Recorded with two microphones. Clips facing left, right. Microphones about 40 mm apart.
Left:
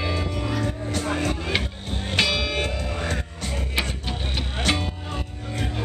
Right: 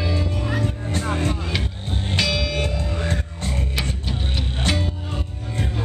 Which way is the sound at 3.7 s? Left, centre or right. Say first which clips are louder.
Even; centre.